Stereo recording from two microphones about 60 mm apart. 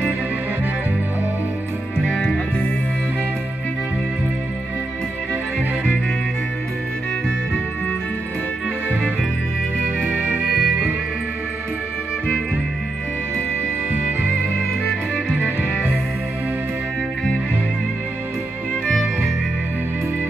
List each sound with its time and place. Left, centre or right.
2.0 s music: centre
10.2 s music: right